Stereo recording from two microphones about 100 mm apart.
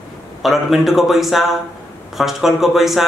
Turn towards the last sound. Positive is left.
turn(degrees=0)  # may be behind; listen again after turning